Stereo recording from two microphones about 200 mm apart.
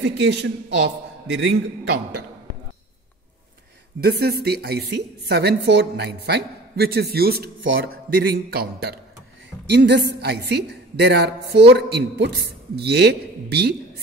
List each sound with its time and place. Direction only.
0.0 s a woman's voice: 55° right (ahead or behind)
4.0 s a woman's voice: 50° right (ahead or behind)
8.5 s a woman's voice: 50° right (ahead or behind)